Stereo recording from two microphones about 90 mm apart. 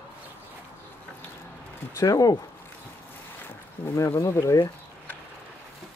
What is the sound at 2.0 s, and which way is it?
Speech, 40° left (ahead or behind).